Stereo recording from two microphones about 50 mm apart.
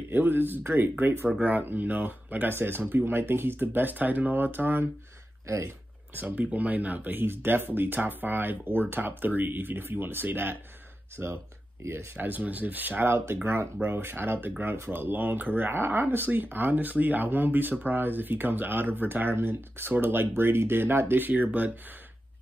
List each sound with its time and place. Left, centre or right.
0.1 s speech: right
6.1 s speech: right
13.0 s speech: right